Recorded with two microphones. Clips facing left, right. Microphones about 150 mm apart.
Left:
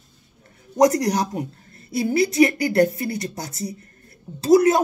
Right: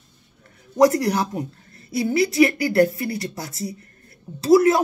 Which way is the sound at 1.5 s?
25° left (ahead or behind).